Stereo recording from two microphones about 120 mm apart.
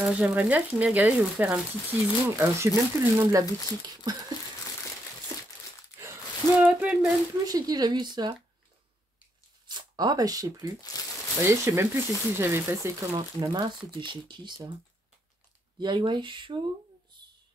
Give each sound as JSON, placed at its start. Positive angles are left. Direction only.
{"t": 0.0, "sound": "speech", "side_deg": -10}
{"t": 3.9, "sound": "a sound", "side_deg": -35}
{"t": 6.5, "sound": "a sound", "side_deg": -10}
{"t": 7.4, "sound": "speech", "side_deg": -30}
{"t": 9.7, "sound": "speech", "side_deg": -35}
{"t": 10.9, "sound": "a sound", "side_deg": 30}
{"t": 11.4, "sound": "speech", "side_deg": -20}
{"t": 13.1, "sound": "speech", "side_deg": -35}
{"t": 15.8, "sound": "speech", "side_deg": -40}